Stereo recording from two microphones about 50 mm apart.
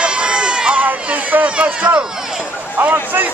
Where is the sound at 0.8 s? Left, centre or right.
Right.